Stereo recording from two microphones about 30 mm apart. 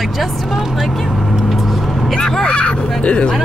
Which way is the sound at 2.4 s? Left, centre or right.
Left.